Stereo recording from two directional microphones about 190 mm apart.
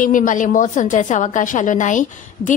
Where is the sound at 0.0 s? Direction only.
45° left (ahead or behind).